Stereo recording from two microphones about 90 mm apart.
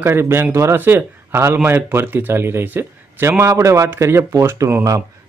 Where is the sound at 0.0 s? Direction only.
25° right (ahead or behind).